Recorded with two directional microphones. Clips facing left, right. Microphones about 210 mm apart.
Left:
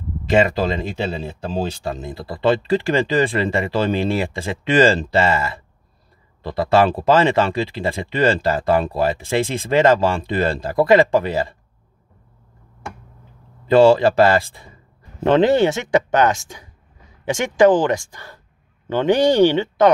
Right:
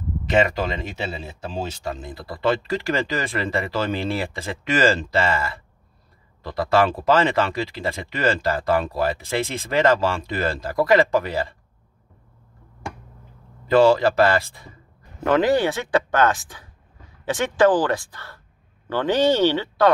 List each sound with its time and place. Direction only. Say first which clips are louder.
0.3 s speech: left 4 dB; 30° left (ahead or behind)
13.7 s speech: left 4 dB; 30° left (ahead or behind)